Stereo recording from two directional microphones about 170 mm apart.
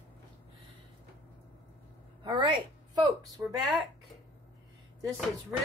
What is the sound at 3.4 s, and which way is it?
Speech, 10° right (ahead or behind).